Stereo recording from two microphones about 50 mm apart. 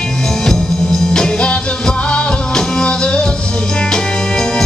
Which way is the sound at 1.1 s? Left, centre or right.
Centre.